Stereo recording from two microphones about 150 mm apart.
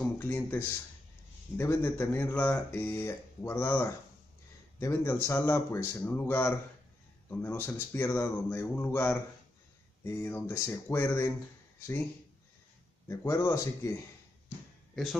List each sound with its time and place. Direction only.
0.0 s speech: 15° left (ahead or behind)
13.1 s speech: 20° left (ahead or behind)